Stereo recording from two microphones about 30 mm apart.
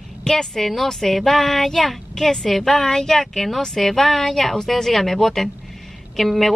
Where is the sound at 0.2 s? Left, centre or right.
Centre.